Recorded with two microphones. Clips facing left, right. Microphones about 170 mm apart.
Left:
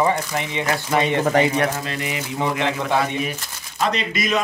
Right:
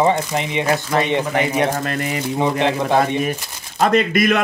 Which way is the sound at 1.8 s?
50° right (ahead or behind).